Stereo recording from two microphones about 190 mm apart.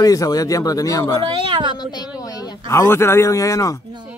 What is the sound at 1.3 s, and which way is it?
Speech, 25° right (ahead or behind).